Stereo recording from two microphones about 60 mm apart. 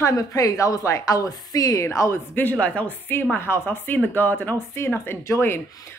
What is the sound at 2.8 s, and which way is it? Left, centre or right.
A woman's voice, left.